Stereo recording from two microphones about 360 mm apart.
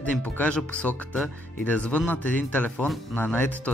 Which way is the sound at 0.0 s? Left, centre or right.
Centre.